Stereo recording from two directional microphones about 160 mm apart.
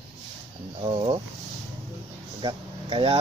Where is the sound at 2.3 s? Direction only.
30° right (ahead or behind).